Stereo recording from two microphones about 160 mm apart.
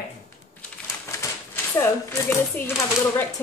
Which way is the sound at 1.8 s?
15° left (ahead or behind).